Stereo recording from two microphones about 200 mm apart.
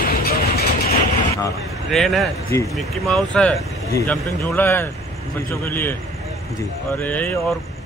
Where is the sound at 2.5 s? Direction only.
15° left (ahead or behind).